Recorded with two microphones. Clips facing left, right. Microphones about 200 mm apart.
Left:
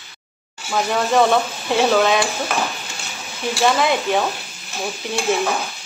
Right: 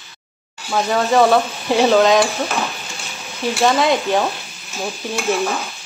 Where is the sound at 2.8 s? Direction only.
15° right (ahead or behind).